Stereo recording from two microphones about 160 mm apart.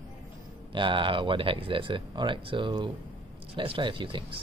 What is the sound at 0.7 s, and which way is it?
Speech, 30° right (ahead or behind).